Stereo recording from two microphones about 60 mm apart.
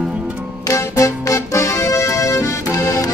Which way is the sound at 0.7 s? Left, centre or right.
Left.